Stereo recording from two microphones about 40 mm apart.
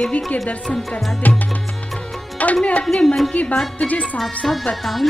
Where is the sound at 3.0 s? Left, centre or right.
Centre.